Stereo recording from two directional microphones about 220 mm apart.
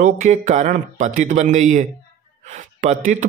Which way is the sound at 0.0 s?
30° right (ahead or behind).